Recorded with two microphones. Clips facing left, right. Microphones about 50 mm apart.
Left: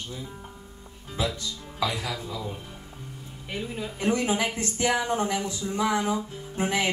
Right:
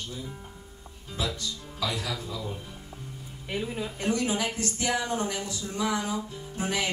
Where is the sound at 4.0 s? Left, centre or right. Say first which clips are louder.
Left 3 dB; left.